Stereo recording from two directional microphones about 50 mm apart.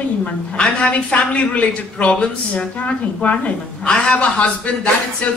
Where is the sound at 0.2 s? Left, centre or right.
Left.